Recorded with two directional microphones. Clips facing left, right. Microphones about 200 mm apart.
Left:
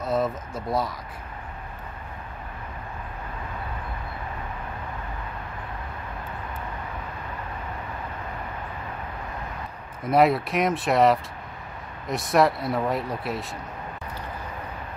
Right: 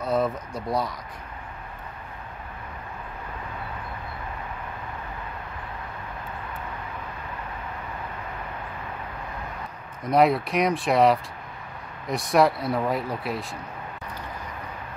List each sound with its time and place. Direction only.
0.0 s speech: centre (ahead or behind)
10.0 s speech: centre (ahead or behind)